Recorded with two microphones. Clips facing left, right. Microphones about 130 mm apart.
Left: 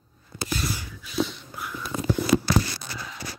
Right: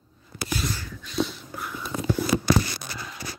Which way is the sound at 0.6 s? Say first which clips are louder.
Even; 5° left (ahead or behind).